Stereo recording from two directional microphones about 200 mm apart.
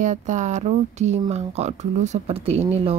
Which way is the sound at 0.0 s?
35° right (ahead or behind).